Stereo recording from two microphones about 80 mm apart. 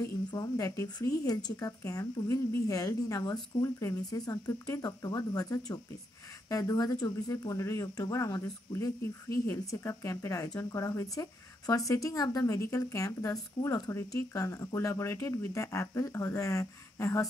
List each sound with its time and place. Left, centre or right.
0.3 s a woman's voice: left
0.8 s a woman's voice: left
12.4 s speech: left